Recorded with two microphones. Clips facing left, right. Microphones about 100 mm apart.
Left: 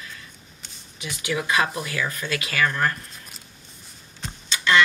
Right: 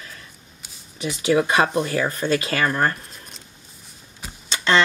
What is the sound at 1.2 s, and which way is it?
Speech, 35° right (ahead or behind).